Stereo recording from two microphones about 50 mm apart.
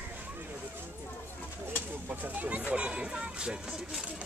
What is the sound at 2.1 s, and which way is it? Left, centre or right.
Speech, right.